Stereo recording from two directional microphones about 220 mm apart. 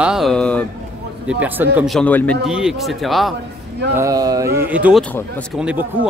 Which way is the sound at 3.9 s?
15° right (ahead or behind).